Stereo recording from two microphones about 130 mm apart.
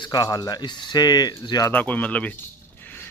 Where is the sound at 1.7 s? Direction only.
10° left (ahead or behind).